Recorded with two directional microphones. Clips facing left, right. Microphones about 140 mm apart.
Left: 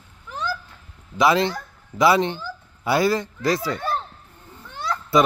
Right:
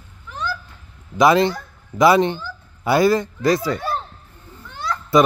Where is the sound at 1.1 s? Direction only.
50° right (ahead or behind).